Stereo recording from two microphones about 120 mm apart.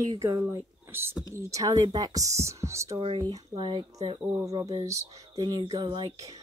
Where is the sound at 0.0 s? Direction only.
25° right (ahead or behind).